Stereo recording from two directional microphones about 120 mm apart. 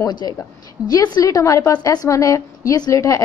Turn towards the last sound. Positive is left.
turn(degrees=25)  # may be behind; listen again after turning